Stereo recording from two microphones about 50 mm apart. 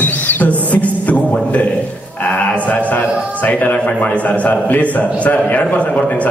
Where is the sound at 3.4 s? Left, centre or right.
Left.